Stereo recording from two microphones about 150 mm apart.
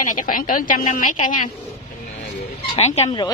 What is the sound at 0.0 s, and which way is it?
A woman's voice, 60° left (ahead or behind).